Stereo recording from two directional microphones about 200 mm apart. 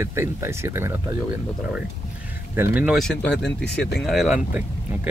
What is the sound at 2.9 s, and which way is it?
Speech, 5° left (ahead or behind).